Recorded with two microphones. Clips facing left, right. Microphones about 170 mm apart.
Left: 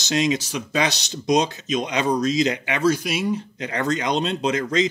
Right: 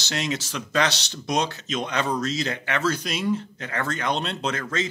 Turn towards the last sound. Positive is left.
turn(degrees=15)  # may be behind; listen again after turning